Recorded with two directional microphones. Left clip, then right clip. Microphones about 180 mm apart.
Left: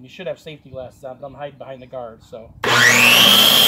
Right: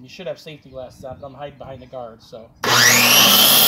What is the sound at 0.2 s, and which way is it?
Speech, centre (ahead or behind).